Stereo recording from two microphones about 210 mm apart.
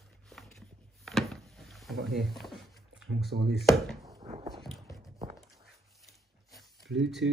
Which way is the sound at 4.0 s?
20° right (ahead or behind).